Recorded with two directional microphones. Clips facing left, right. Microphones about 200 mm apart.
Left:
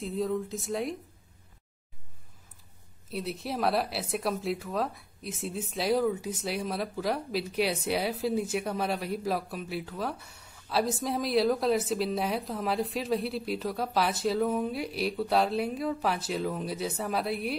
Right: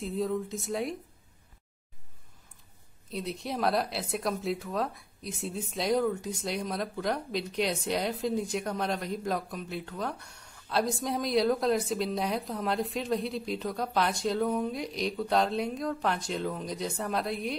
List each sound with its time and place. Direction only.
0.0 s speech: centre (ahead or behind)
3.1 s speech: centre (ahead or behind)